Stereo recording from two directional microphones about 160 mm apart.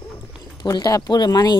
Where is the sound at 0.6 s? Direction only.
25° left (ahead or behind).